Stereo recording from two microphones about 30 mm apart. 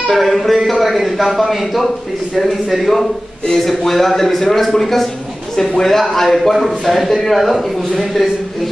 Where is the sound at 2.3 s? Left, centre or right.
Centre.